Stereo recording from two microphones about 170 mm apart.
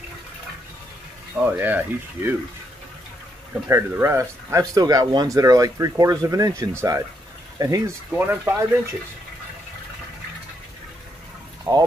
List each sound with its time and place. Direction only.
1.3 s speech: 10° right (ahead or behind)
3.6 s speech: 15° right (ahead or behind)
11.7 s speech: 15° right (ahead or behind)